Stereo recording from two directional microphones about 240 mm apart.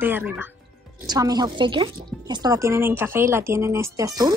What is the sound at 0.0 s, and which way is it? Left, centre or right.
A woman's voice, centre.